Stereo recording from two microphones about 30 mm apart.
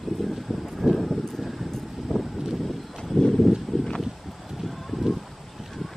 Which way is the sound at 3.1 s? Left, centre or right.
Left.